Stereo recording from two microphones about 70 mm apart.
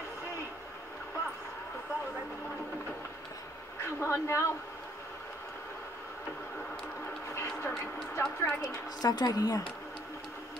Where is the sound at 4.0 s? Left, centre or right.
Left.